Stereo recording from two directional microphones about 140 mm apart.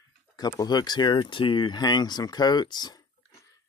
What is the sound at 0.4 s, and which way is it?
Speech, 30° left (ahead or behind).